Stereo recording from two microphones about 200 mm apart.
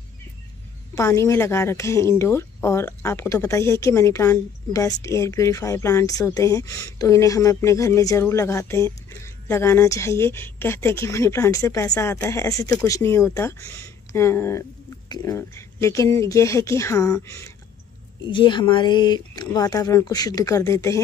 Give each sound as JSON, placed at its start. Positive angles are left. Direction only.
{"t": 0.9, "sound": "speech", "side_deg": 15}